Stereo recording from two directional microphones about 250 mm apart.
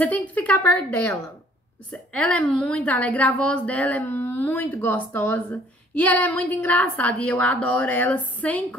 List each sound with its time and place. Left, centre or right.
0.0 s a woman's voice: centre